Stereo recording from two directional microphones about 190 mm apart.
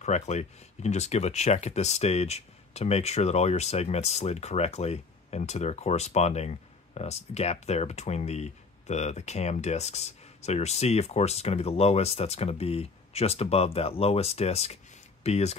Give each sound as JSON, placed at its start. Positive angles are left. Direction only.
{"t": 0.0, "sound": "speech", "side_deg": 35}